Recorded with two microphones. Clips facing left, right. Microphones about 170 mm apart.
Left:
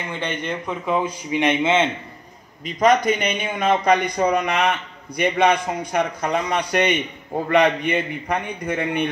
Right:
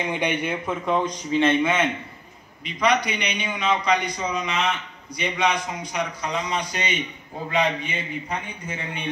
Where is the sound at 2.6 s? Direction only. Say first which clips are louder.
Left 5 dB; 45° left (ahead or behind).